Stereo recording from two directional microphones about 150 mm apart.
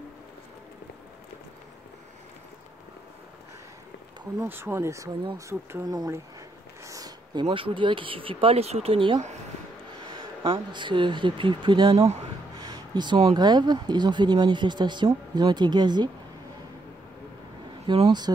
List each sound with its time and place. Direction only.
4.4 s speech: 15° right (ahead or behind)
6.8 s a sound: 25° right (ahead or behind)
7.4 s speech: 35° right (ahead or behind)
10.1 s speech: 35° right (ahead or behind)
12.5 s a sound: 25° right (ahead or behind)
13.3 s speech: 30° right (ahead or behind)
17.8 s speech: 40° right (ahead or behind)